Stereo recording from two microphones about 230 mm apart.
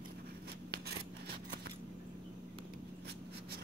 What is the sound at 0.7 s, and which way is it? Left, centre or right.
Scissors, right.